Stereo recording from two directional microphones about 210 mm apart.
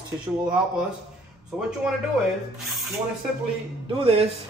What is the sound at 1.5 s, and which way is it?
Speech, 5° right (ahead or behind).